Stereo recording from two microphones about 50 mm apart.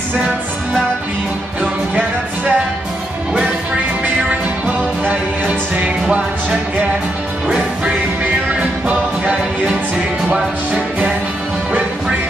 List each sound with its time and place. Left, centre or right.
2.0 s music: right
4.3 s music: right
10.3 s music: right